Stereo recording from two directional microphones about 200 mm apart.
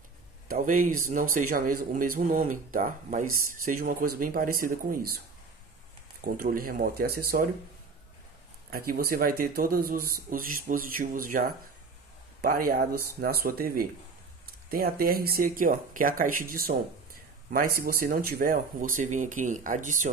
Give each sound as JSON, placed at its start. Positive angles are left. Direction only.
{"t": 0.5, "sound": "speech", "side_deg": -45}
{"t": 6.3, "sound": "speech", "side_deg": -45}
{"t": 8.6, "sound": "speech", "side_deg": -50}